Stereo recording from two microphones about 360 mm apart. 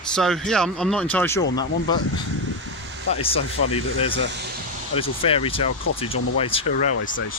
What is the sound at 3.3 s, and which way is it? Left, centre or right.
Speech, centre.